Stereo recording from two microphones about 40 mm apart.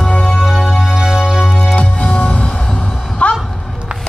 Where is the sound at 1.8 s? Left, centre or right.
Left.